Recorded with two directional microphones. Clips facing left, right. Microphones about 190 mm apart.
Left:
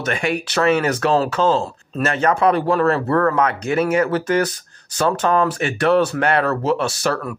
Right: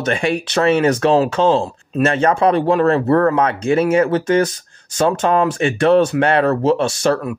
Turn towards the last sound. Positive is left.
turn(degrees=-25)  # may be behind; listen again after turning